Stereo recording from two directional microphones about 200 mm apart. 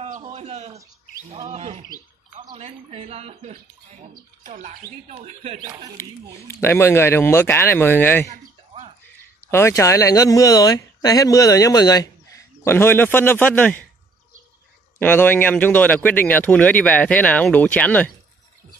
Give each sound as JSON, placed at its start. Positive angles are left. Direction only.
{"t": 0.0, "sound": "a sound", "side_deg": -35}
{"t": 1.3, "sound": "speech", "side_deg": -35}
{"t": 5.9, "sound": "speech", "side_deg": 15}
{"t": 8.3, "sound": "a sound", "side_deg": -30}
{"t": 9.5, "sound": "speech", "side_deg": 15}
{"t": 15.0, "sound": "speech", "side_deg": 10}